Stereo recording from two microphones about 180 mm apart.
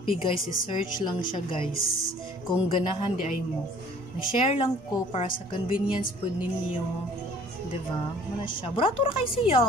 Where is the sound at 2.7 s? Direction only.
30° left (ahead or behind).